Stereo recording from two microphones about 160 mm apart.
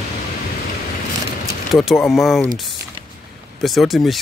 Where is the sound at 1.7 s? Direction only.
Centre (ahead or behind).